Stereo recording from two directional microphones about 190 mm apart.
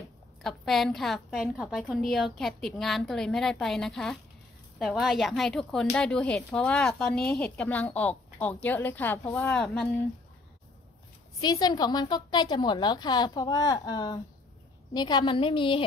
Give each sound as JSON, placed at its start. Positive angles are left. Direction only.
{"t": 0.4, "sound": "a woman's voice", "side_deg": 0}
{"t": 11.4, "sound": "a woman's voice", "side_deg": 20}